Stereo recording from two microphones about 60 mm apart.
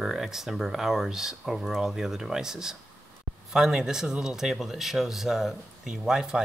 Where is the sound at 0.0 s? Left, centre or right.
Centre.